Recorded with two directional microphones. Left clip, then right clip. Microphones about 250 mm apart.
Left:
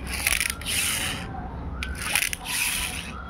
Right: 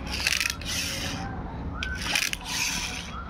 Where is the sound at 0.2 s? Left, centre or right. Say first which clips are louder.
Even; centre.